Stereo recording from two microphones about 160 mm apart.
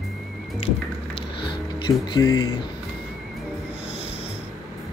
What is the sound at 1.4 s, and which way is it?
Music, 30° left (ahead or behind).